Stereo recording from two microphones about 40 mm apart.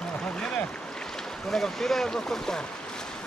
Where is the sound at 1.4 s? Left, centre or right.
Centre.